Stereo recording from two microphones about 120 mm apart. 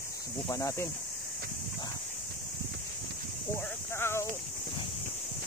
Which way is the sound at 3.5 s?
20° left (ahead or behind).